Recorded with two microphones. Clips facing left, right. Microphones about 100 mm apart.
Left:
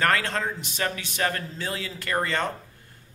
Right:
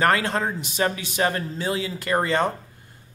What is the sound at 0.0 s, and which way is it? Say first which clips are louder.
Speech: right 3 dB; 15° right (ahead or behind).